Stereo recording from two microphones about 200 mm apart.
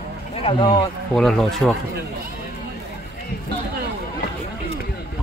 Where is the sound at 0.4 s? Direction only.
25° left (ahead or behind).